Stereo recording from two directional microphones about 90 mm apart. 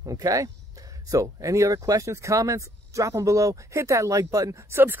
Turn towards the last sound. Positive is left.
turn(degrees=-40)  # may be behind; listen again after turning